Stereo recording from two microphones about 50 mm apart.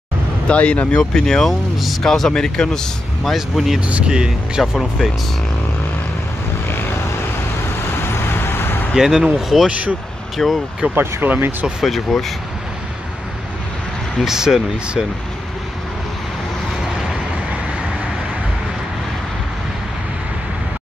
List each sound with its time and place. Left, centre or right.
0.5 s speech: left
1.1 s speech: centre
3.3 s speech: centre
3.8 s speech: centre
4.7 s speech: centre
8.3 s vehicle: left
8.9 s speech: centre
11.0 s speech: right
12.1 s speech: centre
14.2 s speech: centre
17.0 s vehicle: centre